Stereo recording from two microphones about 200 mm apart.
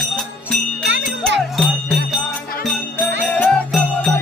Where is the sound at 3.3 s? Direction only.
5° left (ahead or behind).